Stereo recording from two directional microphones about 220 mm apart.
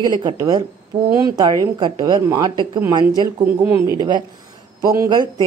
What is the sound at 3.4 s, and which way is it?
Speech, 10° right (ahead or behind).